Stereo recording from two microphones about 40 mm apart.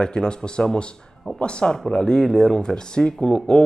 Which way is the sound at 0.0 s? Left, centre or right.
Left.